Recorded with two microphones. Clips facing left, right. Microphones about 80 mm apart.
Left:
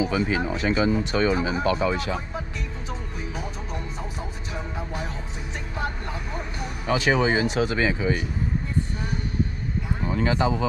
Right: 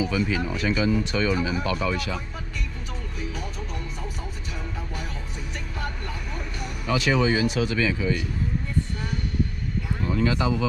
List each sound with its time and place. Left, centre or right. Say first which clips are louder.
0.0 s speech: left 1 dB; left
4.7 s speech: left 3 dB; left
10.0 s speech: left 1 dB; left